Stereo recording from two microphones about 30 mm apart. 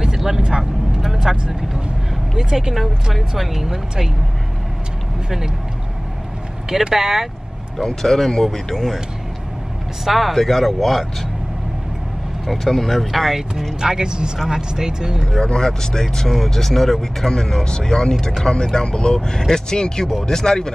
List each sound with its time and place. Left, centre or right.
0.4 s vehicle: right
2.3 s speech: centre
2.7 s speech: centre
6.7 s speech: centre
7.7 s speech: centre
8.7 s speech: centre
10.0 s speech: centre
12.4 s speech: centre
13.7 s speech: right
15.4 s speech: left; by 17.3 s centre
17.3 s speech: left